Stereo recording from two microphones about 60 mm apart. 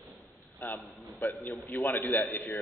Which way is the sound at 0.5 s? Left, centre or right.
Left.